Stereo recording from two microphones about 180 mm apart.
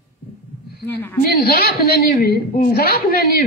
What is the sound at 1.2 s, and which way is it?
A woman's voice, 60° left (ahead or behind).